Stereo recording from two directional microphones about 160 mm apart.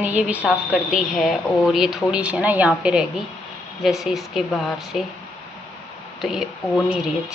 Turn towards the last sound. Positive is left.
turn(degrees=0)  # may be behind; listen again after turning